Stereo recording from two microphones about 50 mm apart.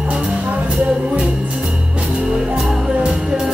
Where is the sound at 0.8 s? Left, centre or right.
Right.